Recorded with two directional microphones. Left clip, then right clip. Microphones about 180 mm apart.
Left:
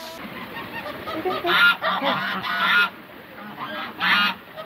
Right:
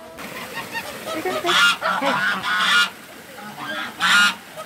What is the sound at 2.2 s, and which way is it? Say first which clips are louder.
Goose: right 5 dB; 50° right (ahead or behind).